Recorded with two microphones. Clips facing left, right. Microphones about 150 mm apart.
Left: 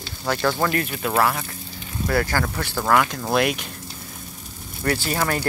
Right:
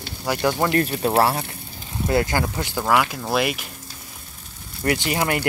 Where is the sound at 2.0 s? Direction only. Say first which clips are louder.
Right 2 dB; 20° right (ahead or behind).